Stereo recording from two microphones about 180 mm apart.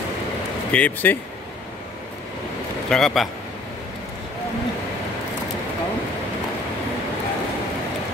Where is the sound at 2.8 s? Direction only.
Centre (ahead or behind).